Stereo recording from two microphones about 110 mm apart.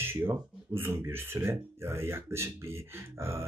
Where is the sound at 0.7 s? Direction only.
20° right (ahead or behind).